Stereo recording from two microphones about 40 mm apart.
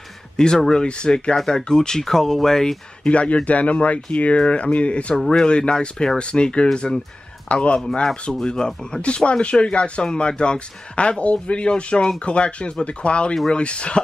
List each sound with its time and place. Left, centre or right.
0.4 s a man's voice: centre
3.1 s speech: left
5.2 s speech: centre
5.5 s a man's voice: left
7.8 s a man's voice: centre